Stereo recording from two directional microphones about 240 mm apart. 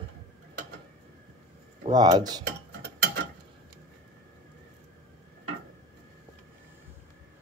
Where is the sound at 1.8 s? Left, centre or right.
Centre.